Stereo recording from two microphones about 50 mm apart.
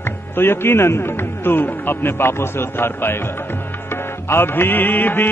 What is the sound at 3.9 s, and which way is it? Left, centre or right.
Music, left.